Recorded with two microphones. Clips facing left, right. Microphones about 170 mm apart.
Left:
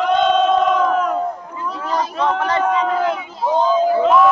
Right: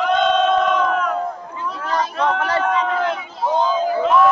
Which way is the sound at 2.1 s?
25° left (ahead or behind).